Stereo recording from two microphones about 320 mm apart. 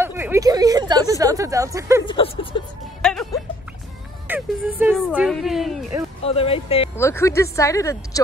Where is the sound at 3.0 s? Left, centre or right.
Centre.